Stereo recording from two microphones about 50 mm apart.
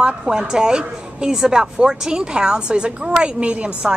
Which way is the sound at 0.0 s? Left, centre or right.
Centre.